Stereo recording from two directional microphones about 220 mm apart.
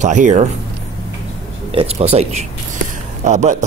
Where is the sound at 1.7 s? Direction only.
25° right (ahead or behind).